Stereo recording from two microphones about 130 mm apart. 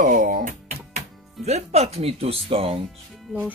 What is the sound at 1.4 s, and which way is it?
Speech, 55° right (ahead or behind).